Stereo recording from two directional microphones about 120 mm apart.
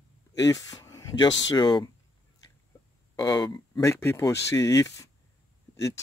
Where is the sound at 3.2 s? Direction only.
35° left (ahead or behind).